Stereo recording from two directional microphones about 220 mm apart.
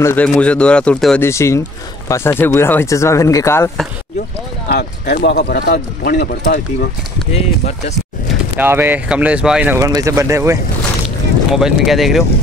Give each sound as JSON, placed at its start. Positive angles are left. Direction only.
{"t": 0.0, "sound": "speech", "side_deg": 5}
{"t": 4.6, "sound": "speech", "side_deg": 45}
{"t": 8.3, "sound": "speech", "side_deg": -10}
{"t": 11.5, "sound": "speech", "side_deg": 0}